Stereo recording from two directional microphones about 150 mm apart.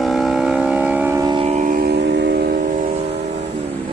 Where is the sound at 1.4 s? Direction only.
50° right (ahead or behind); by 2.3 s 90° right.